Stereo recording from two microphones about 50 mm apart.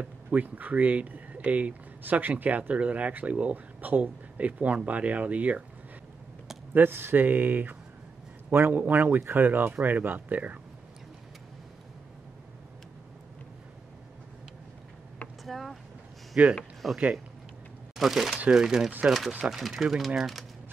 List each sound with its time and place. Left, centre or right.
0.3 s speech: right
6.7 s speech: right
15.4 s vehicle: centre
16.4 s speech: right
16.8 s speech: centre